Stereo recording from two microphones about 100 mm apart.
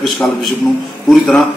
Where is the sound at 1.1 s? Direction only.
5° left (ahead or behind).